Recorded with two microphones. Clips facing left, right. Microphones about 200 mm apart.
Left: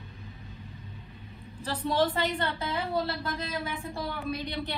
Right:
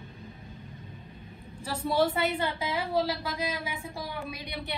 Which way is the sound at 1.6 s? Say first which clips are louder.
Right 1 dB; 10° right (ahead or behind).